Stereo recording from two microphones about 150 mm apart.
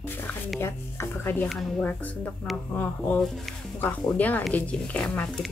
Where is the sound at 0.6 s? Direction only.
15° left (ahead or behind).